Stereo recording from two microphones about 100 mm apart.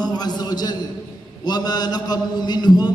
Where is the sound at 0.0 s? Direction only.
45° left (ahead or behind).